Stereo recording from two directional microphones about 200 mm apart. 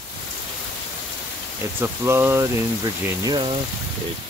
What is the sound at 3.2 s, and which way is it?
Speech, 25° right (ahead or behind).